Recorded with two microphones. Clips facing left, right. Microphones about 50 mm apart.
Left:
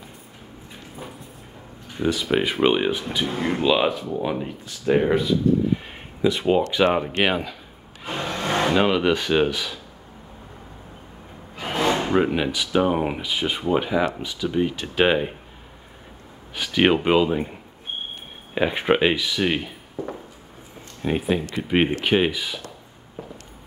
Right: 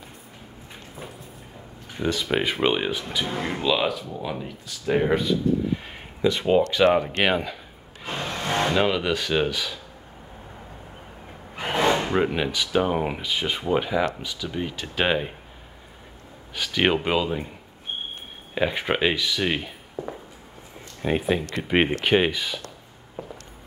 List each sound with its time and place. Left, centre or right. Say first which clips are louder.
2.0 s speech: left 2 dB; centre
3.3 s speech: left 4 dB; centre
4.9 s speech: left 2 dB; centre
8.1 s music: left 2 dB; centre
9.1 s speech: left 3 dB; centre
11.6 s a sound: right 1 dB; centre
11.9 s a sound: left 2 dB; centre
12.4 s speech: left 2 dB; centre
16.5 s speech: left 3 dB; centre